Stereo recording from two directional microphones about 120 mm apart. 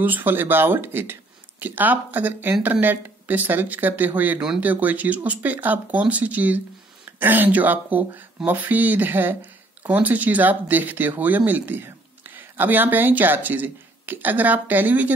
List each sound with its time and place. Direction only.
0.0 s speech: 15° right (ahead or behind)